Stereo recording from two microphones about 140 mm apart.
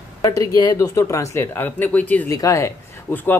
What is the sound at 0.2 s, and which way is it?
Speech, 25° left (ahead or behind).